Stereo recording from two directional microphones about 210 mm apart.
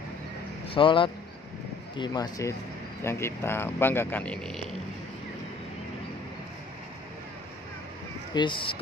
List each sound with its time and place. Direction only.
0.7 s speech: 25° left (ahead or behind); by 4.6 s 5° left (ahead or behind)
8.3 s speech: 20° left (ahead or behind)